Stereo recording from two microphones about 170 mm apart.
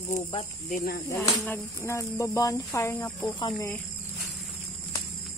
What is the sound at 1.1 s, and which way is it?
Speech, 15° left (ahead or behind).